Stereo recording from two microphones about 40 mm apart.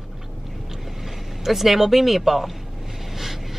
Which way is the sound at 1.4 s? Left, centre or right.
Centre.